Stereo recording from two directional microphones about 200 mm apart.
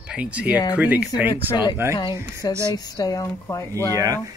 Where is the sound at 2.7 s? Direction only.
15° left (ahead or behind).